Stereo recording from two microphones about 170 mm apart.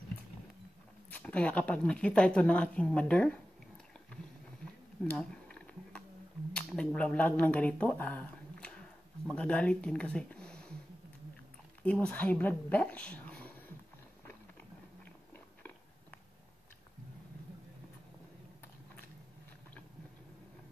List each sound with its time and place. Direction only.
1.1 s speech: 5° left (ahead or behind)
5.0 s a sound: 5° left (ahead or behind)
6.5 s speech: 5° left (ahead or behind)
11.8 s speech: 5° left (ahead or behind)
15.3 s biting: 10° left (ahead or behind)